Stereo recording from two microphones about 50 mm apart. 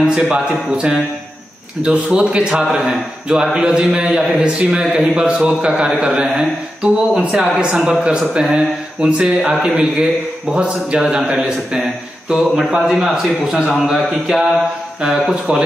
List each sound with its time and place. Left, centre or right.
0.0 s a man's voice: centre
1.8 s a man's voice: right